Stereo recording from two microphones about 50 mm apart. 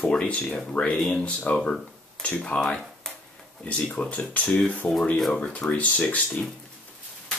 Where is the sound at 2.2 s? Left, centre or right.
Centre.